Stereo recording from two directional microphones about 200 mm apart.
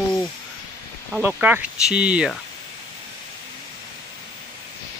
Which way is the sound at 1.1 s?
5° right (ahead or behind).